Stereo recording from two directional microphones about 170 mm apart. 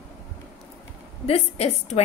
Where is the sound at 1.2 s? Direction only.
35° left (ahead or behind).